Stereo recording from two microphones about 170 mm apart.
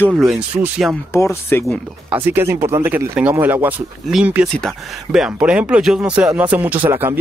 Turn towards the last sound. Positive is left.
turn(degrees=-10)  # may be behind; listen again after turning